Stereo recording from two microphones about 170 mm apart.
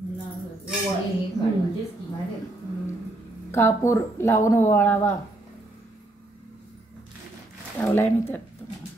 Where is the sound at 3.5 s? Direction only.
15° left (ahead or behind).